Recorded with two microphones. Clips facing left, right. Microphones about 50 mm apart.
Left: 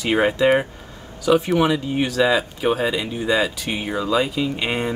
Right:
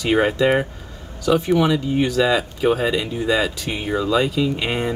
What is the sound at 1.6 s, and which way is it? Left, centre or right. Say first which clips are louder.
Speech: right 1 dB; centre.